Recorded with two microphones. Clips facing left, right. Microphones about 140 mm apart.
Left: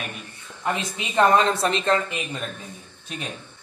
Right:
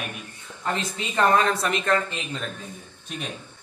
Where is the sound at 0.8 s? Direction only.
20° left (ahead or behind).